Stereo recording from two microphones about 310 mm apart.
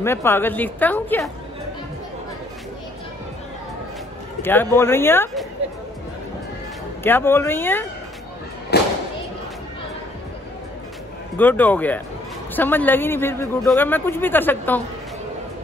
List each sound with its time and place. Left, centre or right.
0.0 s a man's voice: centre
4.4 s a man's voice: centre
7.0 s a man's voice: centre
8.7 s thump: left
11.3 s a man's voice: centre